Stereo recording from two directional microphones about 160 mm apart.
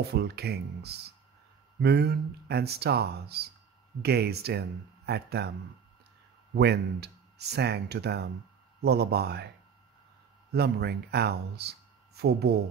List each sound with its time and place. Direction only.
0.0 s speech: 85° right
6.5 s speech: 90° right
10.5 s speech: 90° right